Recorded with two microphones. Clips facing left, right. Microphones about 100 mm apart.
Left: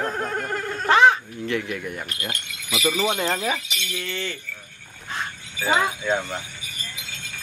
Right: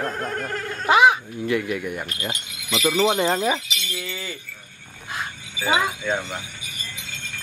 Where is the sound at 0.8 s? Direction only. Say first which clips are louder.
Even; 10° right (ahead or behind).